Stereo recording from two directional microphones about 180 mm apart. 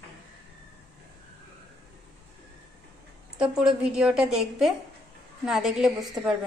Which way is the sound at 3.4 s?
5° right (ahead or behind).